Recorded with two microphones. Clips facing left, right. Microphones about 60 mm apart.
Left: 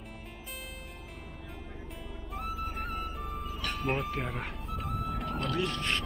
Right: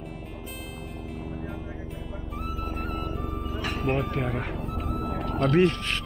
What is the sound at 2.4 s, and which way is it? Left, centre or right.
Music, centre.